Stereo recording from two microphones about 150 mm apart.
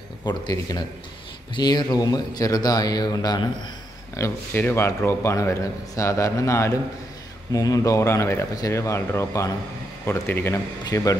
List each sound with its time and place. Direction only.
0.2 s a man's voice: 30° left (ahead or behind)
4.2 s a man's voice: 15° left (ahead or behind)